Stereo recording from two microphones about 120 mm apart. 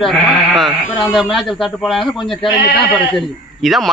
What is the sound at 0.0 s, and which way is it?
A man's voice, centre (ahead or behind).